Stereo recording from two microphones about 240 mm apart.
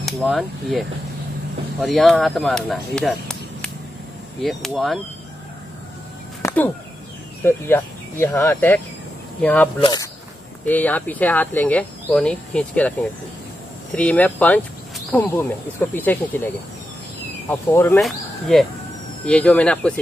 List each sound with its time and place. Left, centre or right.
0.0 s speech: centre
6.4 s a sound: centre
7.4 s speech: centre
9.8 s a sound: centre
10.6 s speech: centre
13.9 s speech: centre
17.5 s speech: centre